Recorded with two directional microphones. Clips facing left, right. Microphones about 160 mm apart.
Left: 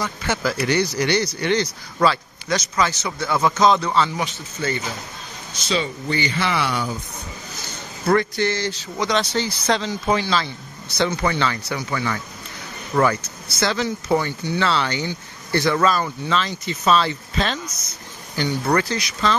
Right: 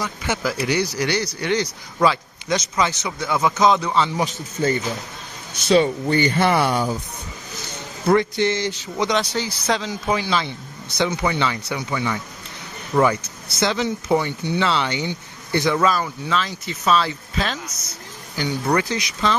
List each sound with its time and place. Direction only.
0.0 s speech: 10° right (ahead or behind)
4.2 s speech: 40° right (ahead or behind)
5.7 s speech: 50° right (ahead or behind)
8.1 s speech: 20° right (ahead or behind)